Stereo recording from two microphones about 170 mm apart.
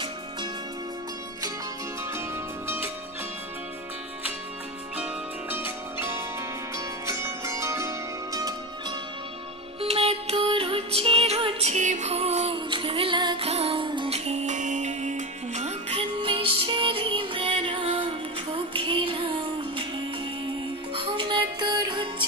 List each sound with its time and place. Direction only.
4.9 s zither: 10° right (ahead or behind)
9.8 s music: 35° right (ahead or behind)
20.9 s music: 30° right (ahead or behind)